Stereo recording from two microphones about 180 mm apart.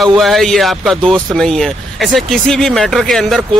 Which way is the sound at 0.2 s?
Centre (ahead or behind).